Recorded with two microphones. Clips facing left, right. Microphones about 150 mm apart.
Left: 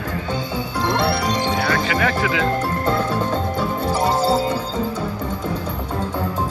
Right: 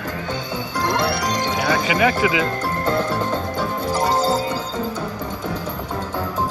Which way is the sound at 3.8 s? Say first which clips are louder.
Even; 30° left (ahead or behind).